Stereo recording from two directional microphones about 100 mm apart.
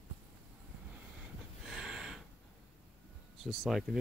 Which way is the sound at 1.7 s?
5° right (ahead or behind).